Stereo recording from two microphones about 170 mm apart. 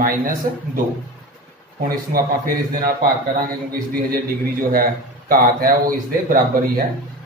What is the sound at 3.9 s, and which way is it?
Speech, 60° right (ahead or behind).